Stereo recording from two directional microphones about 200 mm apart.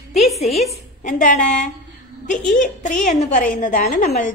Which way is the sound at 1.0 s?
40° left (ahead or behind).